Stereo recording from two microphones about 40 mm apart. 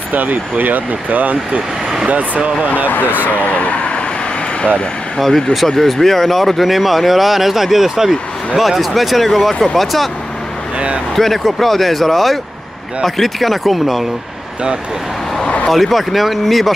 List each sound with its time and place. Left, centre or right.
0.1 s speech: right
3.3 s speech: left
5.2 s speech: centre
11.1 s speech: centre
15.7 s speech: centre